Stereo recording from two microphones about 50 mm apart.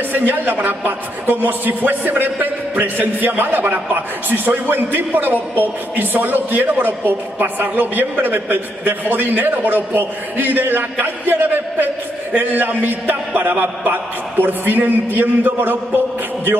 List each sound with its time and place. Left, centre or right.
0.1 s a man's voice: right